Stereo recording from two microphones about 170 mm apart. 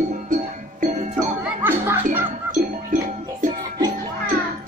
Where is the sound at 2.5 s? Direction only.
50° right (ahead or behind).